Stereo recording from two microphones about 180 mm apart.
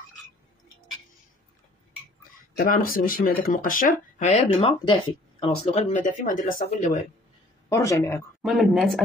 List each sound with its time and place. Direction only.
2.5 s speech: 50° left (ahead or behind); by 5.9 s 30° left (ahead or behind)
5.9 s speech: 45° left (ahead or behind)
7.7 s speech: 15° left (ahead or behind)
8.4 s speech: centre (ahead or behind)